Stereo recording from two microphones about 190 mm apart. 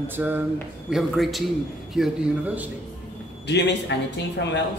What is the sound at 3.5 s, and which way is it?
Speech, 65° left (ahead or behind).